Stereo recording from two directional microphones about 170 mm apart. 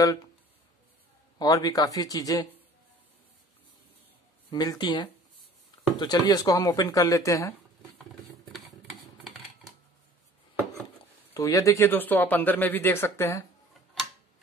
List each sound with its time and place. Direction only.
0.0 s speech: 20° left (ahead or behind)
1.4 s speech: 20° left (ahead or behind)
4.5 s speech: 25° left (ahead or behind)
8.2 s a sound: centre (ahead or behind)
11.3 s speech: 20° left (ahead or behind)